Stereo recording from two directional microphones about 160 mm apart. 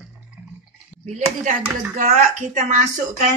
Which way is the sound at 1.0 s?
45° right (ahead or behind).